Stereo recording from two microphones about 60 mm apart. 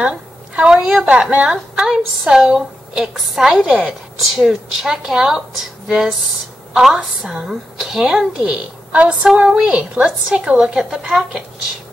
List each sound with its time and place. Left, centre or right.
0.0 s a woman's voice: centre
2.3 s a woman's voice: centre